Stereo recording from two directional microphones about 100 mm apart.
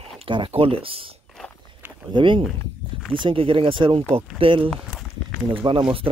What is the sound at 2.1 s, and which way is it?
Speech, 55° right (ahead or behind).